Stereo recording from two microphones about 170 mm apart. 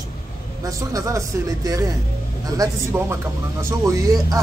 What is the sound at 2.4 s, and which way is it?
Speech, 20° right (ahead or behind).